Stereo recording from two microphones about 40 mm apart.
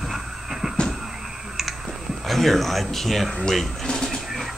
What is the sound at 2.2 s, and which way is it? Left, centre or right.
A man's voice, centre.